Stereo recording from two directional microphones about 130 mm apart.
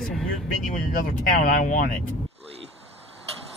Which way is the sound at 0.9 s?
90° left.